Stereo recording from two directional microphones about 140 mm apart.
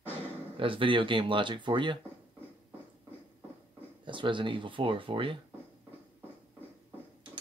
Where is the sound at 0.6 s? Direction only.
40° right (ahead or behind).